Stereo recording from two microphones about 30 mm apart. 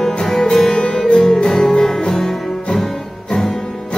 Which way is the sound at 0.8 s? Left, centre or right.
Left.